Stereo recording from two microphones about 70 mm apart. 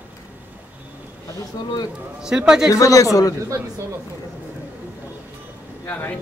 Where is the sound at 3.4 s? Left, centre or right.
Right.